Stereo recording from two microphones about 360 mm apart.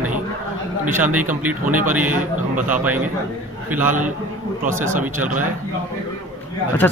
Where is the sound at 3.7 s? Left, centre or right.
Centre.